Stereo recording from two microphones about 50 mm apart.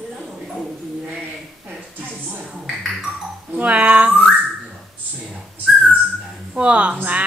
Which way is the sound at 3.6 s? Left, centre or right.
Right.